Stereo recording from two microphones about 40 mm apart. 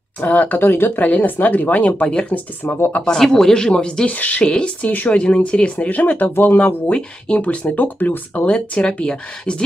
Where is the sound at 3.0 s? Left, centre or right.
Centre.